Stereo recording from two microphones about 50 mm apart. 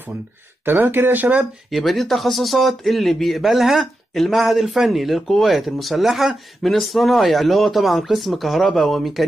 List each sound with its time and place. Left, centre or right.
0.7 s speech: right
1.7 s speech: centre